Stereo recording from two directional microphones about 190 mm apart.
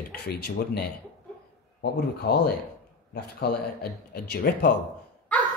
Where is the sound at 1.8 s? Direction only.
55° left (ahead or behind).